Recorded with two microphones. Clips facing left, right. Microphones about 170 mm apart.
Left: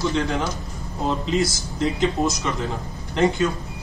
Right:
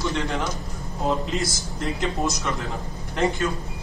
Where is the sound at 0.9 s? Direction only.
Centre (ahead or behind).